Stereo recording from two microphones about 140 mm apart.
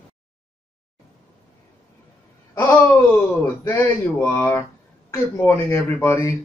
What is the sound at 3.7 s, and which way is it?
Speech, 15° left (ahead or behind).